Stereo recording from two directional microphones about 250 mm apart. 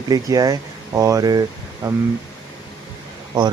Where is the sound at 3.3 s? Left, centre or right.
Centre.